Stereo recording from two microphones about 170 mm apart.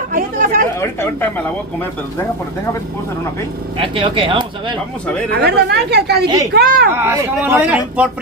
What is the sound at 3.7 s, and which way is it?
Speech, 30° right (ahead or behind).